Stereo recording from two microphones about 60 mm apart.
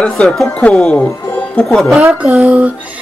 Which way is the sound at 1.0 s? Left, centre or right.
Left.